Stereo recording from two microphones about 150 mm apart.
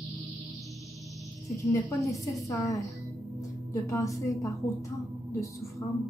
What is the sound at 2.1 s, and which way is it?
A woman's voice, 20° left (ahead or behind).